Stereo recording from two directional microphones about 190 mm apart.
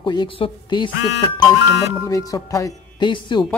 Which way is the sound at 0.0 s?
25° left (ahead or behind).